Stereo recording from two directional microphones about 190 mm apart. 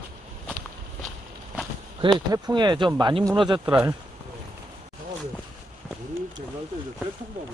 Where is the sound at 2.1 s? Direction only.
20° right (ahead or behind).